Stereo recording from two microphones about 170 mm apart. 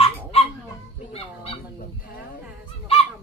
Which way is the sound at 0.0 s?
35° left (ahead or behind).